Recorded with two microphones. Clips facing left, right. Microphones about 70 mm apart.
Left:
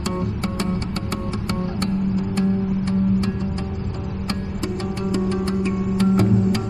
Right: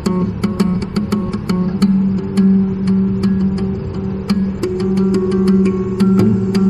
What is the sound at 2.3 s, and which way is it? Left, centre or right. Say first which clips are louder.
Music: right 11 dB; right.